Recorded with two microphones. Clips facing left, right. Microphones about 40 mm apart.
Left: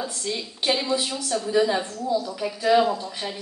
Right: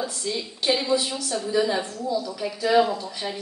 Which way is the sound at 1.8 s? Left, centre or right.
Right.